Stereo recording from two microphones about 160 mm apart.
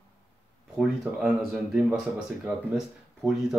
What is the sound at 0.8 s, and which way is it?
Speech, 5° right (ahead or behind).